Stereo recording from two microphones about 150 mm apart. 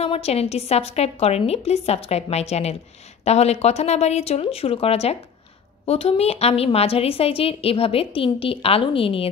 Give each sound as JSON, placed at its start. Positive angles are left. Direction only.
{"t": 0.0, "sound": "a woman's voice", "side_deg": 45}